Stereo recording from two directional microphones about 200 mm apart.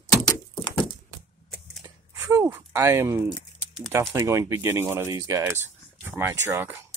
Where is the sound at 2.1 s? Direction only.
10° right (ahead or behind).